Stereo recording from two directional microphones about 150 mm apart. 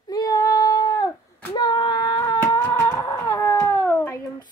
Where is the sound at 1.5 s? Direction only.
30° left (ahead or behind).